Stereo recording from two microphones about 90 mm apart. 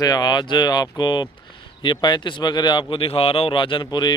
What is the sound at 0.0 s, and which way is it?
Speech, 50° left (ahead or behind).